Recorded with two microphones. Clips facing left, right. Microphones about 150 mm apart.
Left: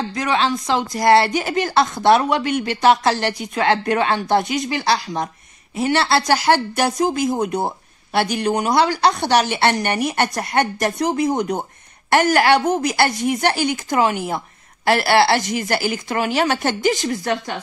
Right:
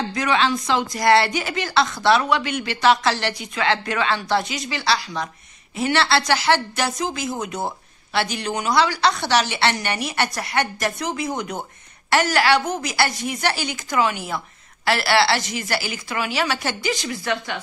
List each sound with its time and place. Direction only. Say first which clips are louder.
0.2 s a woman's voice: left 1 dB; 40° left (ahead or behind)